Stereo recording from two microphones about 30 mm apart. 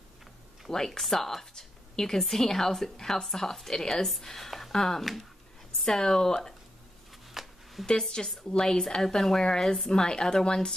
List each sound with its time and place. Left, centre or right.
0.7 s a woman's voice: centre
1.6 s a sound: centre
2.2 s a woman's voice: centre
7.4 s a sound: centre
7.8 s a woman's voice: centre
8.2 s a woman's voice: centre